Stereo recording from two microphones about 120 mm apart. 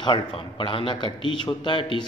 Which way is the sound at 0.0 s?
40° left (ahead or behind).